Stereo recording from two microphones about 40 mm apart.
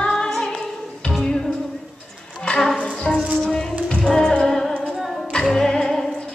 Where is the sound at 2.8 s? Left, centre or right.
Left.